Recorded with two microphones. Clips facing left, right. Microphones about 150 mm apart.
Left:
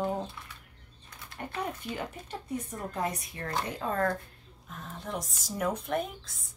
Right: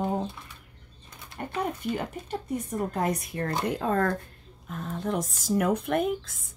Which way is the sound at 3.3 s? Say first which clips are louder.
Right 6 dB; 45° right (ahead or behind).